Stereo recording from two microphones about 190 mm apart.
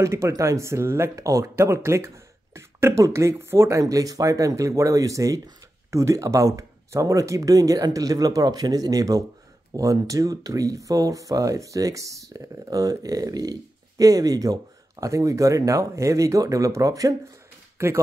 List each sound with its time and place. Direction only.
0.0 s speech: 15° right (ahead or behind)